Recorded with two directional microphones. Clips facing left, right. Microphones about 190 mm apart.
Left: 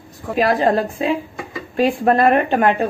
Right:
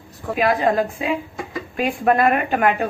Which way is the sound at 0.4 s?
35° left (ahead or behind).